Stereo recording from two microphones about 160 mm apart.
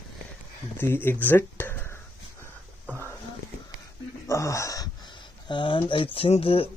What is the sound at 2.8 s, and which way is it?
Whispering, 15° right (ahead or behind).